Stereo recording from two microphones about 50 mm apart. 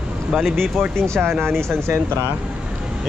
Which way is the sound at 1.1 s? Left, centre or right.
Right.